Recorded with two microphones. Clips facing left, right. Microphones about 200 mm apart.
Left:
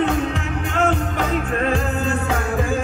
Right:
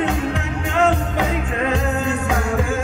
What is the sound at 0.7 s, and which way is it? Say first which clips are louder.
Music: right 3 dB; 15° right (ahead or behind).